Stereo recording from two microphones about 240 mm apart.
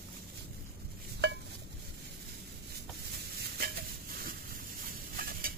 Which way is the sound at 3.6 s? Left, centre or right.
Right.